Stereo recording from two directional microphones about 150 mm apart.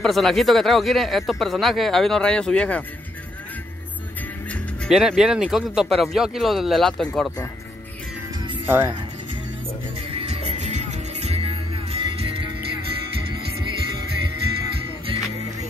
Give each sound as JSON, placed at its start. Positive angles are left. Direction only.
{"t": 0.0, "sound": "speech", "side_deg": 0}
{"t": 4.5, "sound": "speech", "side_deg": 0}
{"t": 8.6, "sound": "speech", "side_deg": -15}
{"t": 10.1, "sound": "music", "side_deg": -45}